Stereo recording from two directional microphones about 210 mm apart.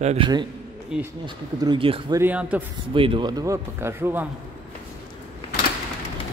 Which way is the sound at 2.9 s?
25° right (ahead or behind).